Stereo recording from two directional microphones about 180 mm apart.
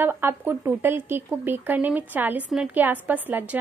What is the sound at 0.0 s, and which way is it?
Speech, 10° right (ahead or behind).